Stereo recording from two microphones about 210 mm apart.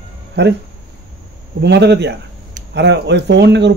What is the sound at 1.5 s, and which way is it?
Speech, 55° right (ahead or behind).